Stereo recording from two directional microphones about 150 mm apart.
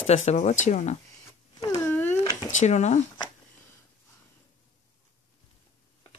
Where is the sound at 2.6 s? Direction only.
50° left (ahead or behind).